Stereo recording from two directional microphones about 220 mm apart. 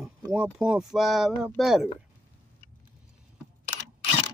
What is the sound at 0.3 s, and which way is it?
Speech, 5° right (ahead or behind).